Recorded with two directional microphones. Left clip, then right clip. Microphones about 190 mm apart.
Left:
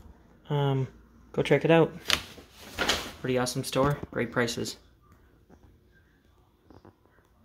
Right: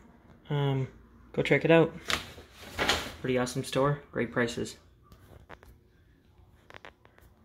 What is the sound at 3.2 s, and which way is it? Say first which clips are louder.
Speech: left 2 dB; 5° left (ahead or behind).